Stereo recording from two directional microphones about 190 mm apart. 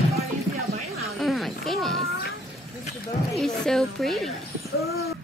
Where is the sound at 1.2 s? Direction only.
Centre (ahead or behind).